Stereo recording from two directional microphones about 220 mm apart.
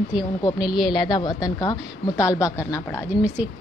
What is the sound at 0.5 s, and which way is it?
Speech, centre (ahead or behind).